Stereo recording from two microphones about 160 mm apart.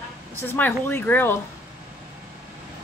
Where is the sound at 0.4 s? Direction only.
10° left (ahead or behind).